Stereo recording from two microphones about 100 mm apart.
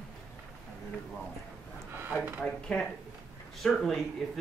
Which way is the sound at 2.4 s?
5° left (ahead or behind).